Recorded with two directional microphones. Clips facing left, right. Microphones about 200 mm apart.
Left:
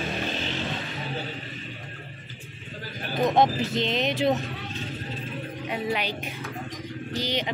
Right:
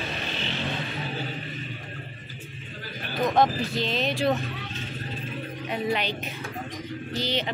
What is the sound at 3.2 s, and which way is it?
Speech, 20° left (ahead or behind).